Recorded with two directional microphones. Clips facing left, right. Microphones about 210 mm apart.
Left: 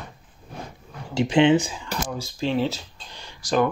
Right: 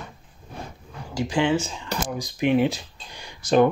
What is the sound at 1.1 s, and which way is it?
Speech, 20° left (ahead or behind).